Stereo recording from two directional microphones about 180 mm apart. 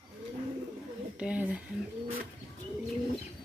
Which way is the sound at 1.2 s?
5° right (ahead or behind).